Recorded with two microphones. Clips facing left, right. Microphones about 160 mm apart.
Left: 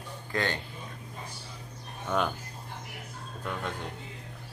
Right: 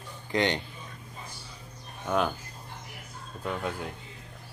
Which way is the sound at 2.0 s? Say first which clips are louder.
Right 2 dB; centre (ahead or behind).